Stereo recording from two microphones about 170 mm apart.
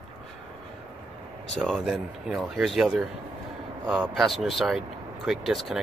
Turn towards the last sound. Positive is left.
turn(degrees=0)  # may be behind; listen again after turning